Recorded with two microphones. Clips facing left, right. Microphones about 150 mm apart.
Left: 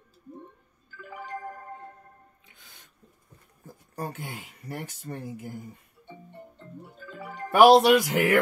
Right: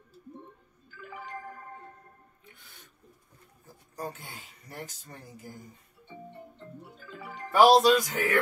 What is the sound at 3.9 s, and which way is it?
Speech, 60° left (ahead or behind).